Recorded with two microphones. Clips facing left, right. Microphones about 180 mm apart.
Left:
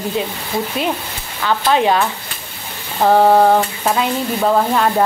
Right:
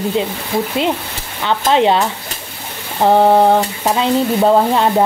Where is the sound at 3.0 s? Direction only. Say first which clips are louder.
Right 1 dB; 20° right (ahead or behind).